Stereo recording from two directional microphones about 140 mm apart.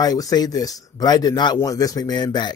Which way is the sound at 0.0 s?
25° left (ahead or behind).